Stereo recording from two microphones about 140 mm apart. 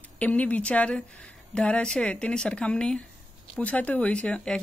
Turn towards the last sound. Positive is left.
turn(degrees=5)  # may be behind; listen again after turning